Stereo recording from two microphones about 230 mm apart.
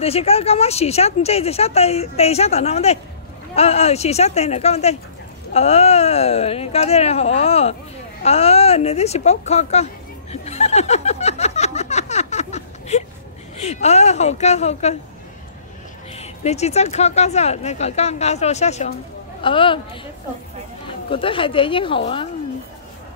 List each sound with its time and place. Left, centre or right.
0.0 s speech: left
10.3 s chuckle: left
13.6 s speech: left
16.2 s speech: left
21.1 s speech: left